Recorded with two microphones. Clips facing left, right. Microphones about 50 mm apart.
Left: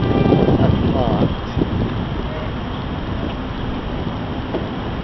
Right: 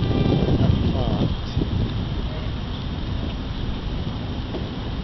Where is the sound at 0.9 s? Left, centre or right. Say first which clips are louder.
Left 7 dB; left.